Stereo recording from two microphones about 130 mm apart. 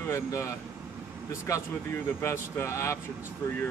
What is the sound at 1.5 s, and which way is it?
A man's voice, 20° left (ahead or behind).